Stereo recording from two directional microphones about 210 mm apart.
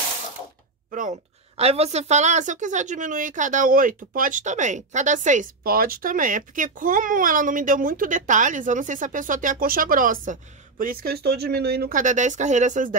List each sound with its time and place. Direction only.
1.6 s a woman's voice: 30° right (ahead or behind)